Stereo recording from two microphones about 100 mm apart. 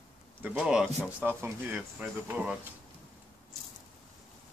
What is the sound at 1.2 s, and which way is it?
Speech, 20° right (ahead or behind).